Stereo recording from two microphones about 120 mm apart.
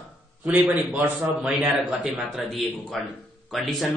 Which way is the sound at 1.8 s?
Centre (ahead or behind).